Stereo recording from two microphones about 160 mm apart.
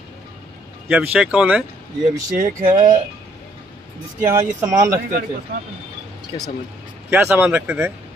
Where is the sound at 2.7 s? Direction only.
25° right (ahead or behind).